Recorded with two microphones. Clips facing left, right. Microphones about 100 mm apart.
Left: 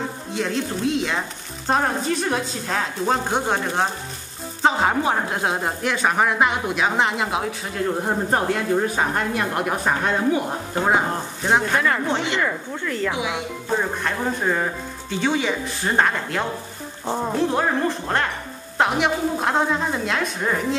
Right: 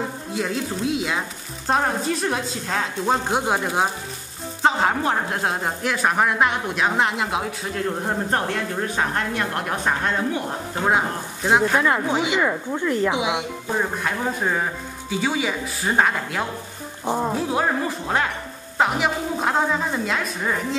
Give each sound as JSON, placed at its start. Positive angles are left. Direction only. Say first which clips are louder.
{"t": 0.3, "sound": "speech", "louder": "left 2 dB", "side_deg": -5}
{"t": 13.7, "sound": "speech", "louder": "even", "side_deg": -5}